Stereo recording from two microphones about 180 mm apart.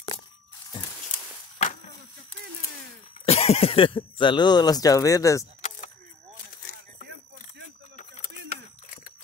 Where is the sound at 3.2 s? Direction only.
35° left (ahead or behind); by 5.5 s 15° left (ahead or behind).